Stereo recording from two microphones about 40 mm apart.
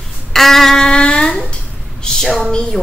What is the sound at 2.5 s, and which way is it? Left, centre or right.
Music, centre.